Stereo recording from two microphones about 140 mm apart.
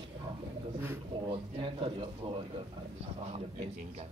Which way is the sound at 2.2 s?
35° right (ahead or behind).